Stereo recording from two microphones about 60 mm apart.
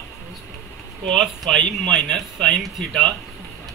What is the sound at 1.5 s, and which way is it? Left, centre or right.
Speech, centre.